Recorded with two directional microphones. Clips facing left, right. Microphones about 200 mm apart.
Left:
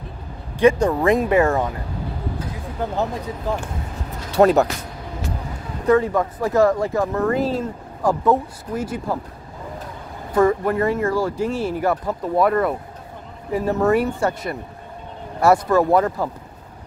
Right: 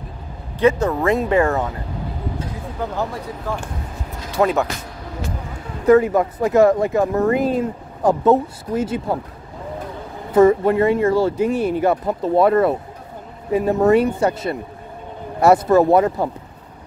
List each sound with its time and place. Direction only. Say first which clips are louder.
0.6 s speech: left 1 dB; 15° left (ahead or behind)
4.4 s speech: left 4 dB; 40° left (ahead or behind)
5.9 s speech: right 4 dB; 20° right (ahead or behind)
10.3 s speech: right 5 dB; 20° right (ahead or behind)